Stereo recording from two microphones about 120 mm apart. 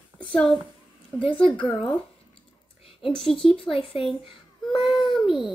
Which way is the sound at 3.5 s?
50° left (ahead or behind).